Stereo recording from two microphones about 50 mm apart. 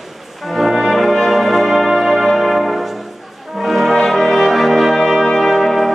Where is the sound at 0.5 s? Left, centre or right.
Centre.